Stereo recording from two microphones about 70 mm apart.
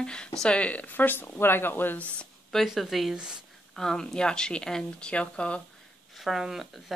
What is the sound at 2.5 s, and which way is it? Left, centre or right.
Speech, centre.